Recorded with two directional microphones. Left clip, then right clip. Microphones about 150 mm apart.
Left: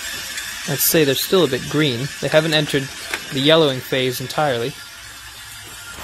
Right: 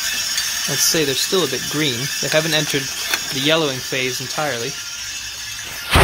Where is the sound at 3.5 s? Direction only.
25° left (ahead or behind).